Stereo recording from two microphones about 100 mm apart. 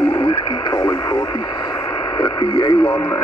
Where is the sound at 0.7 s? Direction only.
55° left (ahead or behind).